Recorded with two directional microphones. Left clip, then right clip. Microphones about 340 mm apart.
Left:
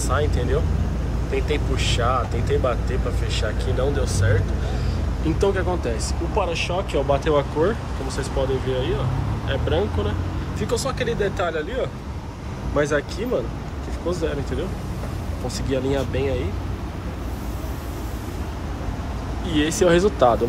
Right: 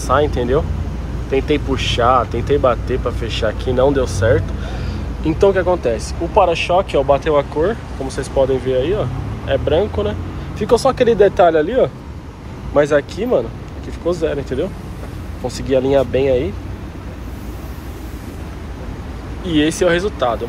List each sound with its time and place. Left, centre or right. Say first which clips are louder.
0.0 s speech: right 9 dB; centre
12.7 s speech: right 8 dB; centre
19.4 s speech: right 4 dB; centre